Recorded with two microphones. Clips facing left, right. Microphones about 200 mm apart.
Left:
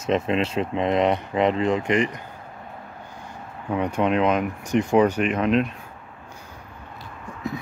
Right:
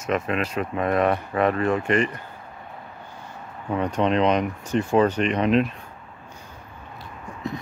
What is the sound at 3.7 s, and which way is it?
Speech, 10° left (ahead or behind).